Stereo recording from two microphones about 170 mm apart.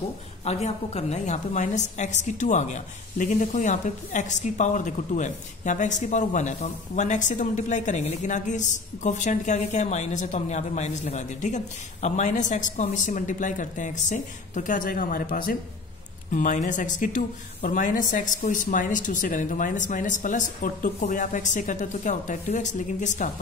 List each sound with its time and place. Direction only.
0.5 s a woman's voice: 40° left (ahead or behind)